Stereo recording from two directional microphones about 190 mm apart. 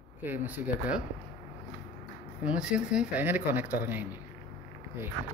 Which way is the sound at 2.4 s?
5° right (ahead or behind).